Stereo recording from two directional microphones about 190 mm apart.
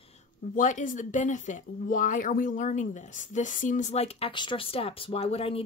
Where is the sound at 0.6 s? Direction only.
40° left (ahead or behind).